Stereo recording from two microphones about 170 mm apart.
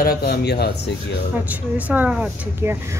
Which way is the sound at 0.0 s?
60° left (ahead or behind).